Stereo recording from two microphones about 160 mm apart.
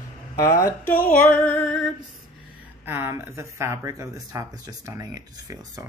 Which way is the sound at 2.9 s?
15° right (ahead or behind).